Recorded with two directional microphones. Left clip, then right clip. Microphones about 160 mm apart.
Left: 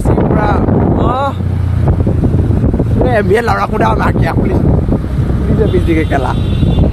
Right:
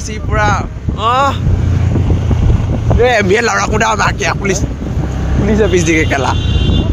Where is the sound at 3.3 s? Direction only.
10° left (ahead or behind).